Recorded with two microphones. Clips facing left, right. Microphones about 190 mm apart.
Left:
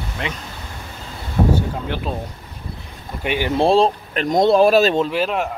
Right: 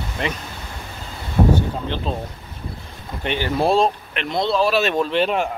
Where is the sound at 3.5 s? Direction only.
30° left (ahead or behind); by 4.8 s 50° left (ahead or behind).